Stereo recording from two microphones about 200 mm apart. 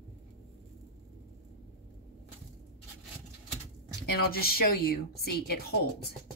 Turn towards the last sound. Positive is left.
turn(degrees=50)  # may be behind; listen again after turning